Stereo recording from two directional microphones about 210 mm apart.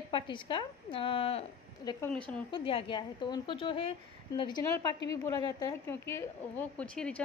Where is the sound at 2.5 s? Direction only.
25° left (ahead or behind).